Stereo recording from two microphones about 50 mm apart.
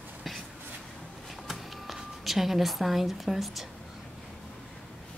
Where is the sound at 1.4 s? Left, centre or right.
Centre.